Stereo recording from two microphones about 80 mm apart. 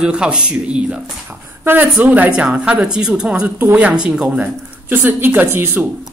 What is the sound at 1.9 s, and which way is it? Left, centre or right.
A man's voice, centre.